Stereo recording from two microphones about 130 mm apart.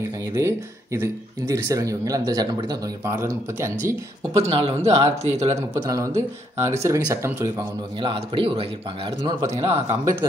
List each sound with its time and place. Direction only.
0.3 s speech: 20° right (ahead or behind)
4.4 s speech: 50° right (ahead or behind)
5.9 s speech: 25° right (ahead or behind)
8.0 s speech: 45° right (ahead or behind)